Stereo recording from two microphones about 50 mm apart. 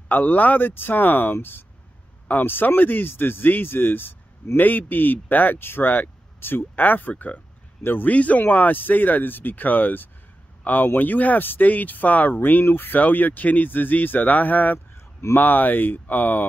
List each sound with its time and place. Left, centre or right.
0.1 s speech: left
8.1 s speech: left